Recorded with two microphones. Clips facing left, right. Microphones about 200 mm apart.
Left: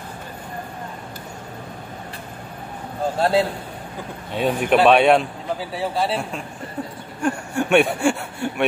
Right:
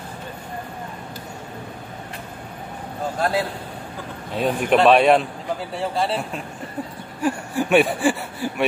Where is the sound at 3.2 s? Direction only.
25° left (ahead or behind).